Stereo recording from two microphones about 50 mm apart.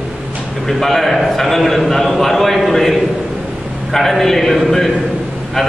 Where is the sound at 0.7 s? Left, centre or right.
Centre.